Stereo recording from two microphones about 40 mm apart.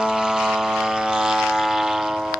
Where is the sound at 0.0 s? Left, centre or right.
Centre.